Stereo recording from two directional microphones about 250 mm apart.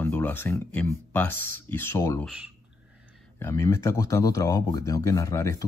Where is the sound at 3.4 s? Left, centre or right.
Centre.